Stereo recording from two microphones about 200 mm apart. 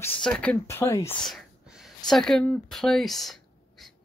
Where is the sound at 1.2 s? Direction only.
Centre (ahead or behind).